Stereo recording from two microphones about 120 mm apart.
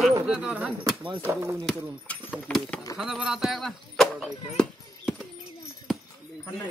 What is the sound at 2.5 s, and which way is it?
Speech, 5° left (ahead or behind).